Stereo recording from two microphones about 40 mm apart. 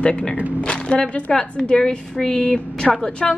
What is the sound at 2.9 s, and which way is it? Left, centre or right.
Speech, left.